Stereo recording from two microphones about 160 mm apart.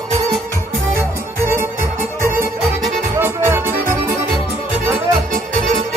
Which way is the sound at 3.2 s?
15° right (ahead or behind).